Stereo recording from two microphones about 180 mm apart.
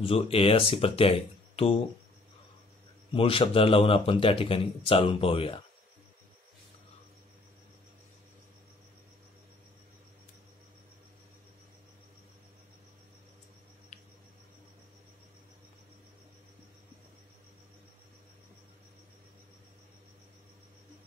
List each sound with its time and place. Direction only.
0.0 s speech: 30° left (ahead or behind)
3.1 s speech: 30° left (ahead or behind)
13.9 s a sound: 40° left (ahead or behind)